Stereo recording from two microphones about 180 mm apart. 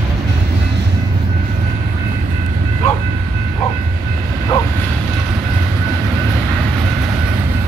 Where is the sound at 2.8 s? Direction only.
40° left (ahead or behind).